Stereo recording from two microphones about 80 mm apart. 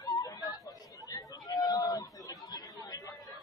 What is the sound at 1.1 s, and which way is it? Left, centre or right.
Chatter, left.